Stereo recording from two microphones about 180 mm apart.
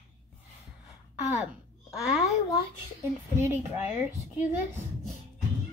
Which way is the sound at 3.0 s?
15° right (ahead or behind).